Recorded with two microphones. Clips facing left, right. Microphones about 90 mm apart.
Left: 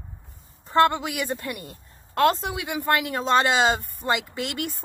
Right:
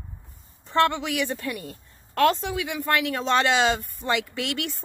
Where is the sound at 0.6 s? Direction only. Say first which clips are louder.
Left 2 dB; 40° left (ahead or behind).